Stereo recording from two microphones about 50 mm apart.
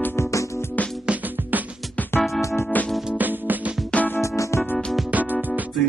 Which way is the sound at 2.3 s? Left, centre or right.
Left.